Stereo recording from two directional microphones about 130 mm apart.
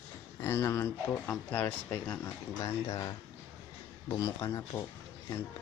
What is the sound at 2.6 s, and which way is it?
Speech, 30° left (ahead or behind).